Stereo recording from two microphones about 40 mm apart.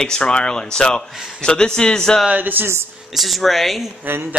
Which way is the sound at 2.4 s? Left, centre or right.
Right.